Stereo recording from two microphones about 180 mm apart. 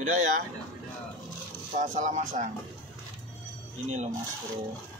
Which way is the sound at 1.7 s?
40° right (ahead or behind).